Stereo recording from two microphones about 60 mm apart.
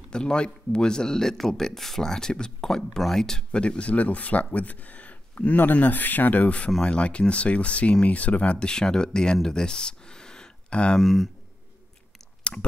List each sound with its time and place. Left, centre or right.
0.1 s speech: centre
11.0 s speech: centre
12.4 s chewing: centre